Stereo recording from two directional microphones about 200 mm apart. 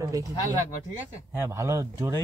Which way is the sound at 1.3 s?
15° right (ahead or behind).